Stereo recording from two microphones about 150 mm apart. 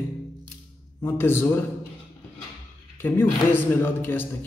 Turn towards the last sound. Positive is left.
turn(degrees=15)  # may be behind; listen again after turning